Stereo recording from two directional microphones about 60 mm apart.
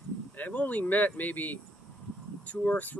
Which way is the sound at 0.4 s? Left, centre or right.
Left.